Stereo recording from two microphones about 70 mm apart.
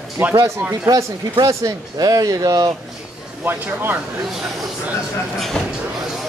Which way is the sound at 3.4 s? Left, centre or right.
Right.